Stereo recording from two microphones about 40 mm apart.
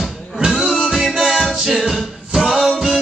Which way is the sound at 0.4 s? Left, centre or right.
Centre.